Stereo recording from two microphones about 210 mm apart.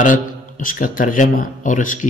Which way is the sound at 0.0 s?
40° left (ahead or behind).